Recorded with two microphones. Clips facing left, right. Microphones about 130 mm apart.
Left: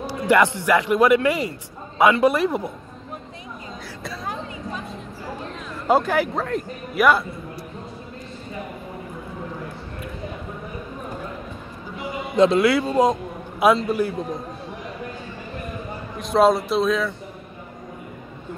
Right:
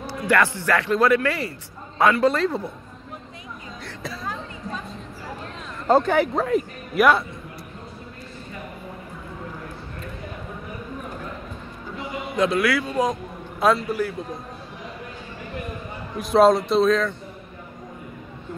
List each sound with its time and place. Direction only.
0.0 s a man's voice: 20° left (ahead or behind)
5.9 s speech: 5° left (ahead or behind)
12.4 s speech: 25° left (ahead or behind)
13.6 s speech: 15° left (ahead or behind)
16.2 s speech: centre (ahead or behind)